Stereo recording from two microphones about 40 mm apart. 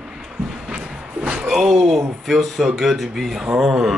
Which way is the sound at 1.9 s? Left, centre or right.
Centre.